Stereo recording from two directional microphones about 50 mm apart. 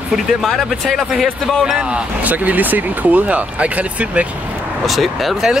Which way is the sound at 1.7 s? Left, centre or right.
Right.